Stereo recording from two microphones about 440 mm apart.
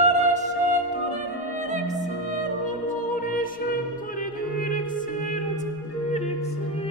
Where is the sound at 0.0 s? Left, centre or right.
Centre.